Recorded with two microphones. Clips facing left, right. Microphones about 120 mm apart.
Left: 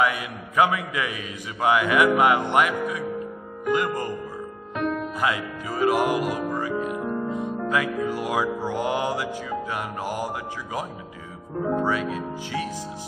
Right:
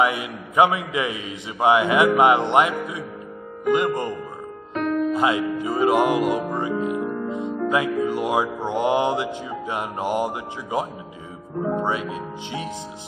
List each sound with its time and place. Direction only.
0.0 s a man's voice: 20° right (ahead or behind)
5.1 s a man's voice: 20° right (ahead or behind)